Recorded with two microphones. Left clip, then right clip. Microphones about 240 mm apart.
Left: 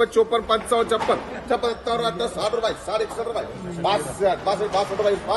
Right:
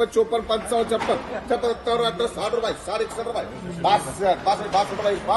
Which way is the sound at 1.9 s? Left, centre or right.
Centre.